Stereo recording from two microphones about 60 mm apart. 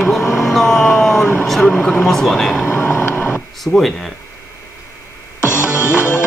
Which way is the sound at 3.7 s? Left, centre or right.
Centre.